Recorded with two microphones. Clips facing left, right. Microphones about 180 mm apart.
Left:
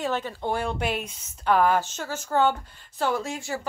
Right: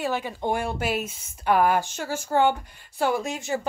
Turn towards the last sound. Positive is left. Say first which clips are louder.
# right 2 dB
turn(degrees=-20)  # may be behind; listen again after turning